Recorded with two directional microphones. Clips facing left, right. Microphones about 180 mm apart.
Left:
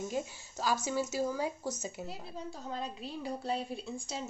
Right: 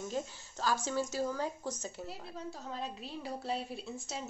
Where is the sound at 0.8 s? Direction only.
10° left (ahead or behind).